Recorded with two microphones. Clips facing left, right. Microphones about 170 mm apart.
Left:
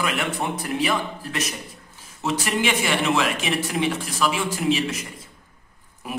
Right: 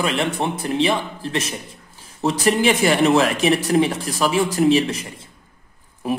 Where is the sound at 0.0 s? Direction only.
30° right (ahead or behind).